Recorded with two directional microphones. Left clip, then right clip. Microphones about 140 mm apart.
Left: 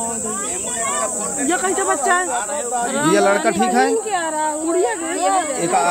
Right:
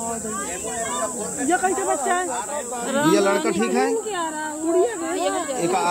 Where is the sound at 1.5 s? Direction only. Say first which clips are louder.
Left 2 dB; 25° left (ahead or behind).